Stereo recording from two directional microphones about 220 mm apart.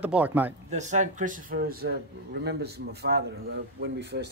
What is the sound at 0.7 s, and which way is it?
A man's voice, 35° right (ahead or behind).